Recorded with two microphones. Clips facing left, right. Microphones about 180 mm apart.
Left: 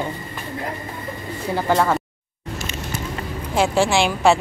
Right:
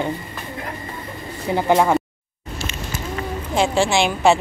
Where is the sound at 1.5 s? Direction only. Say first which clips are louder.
Right 3 dB; 15° right (ahead or behind).